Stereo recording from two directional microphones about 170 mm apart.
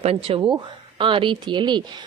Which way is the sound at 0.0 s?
35° right (ahead or behind).